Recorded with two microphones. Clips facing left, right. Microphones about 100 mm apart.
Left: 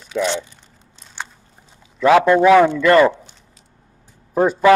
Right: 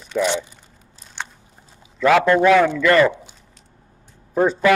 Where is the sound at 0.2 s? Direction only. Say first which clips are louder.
Even; 15° right (ahead or behind).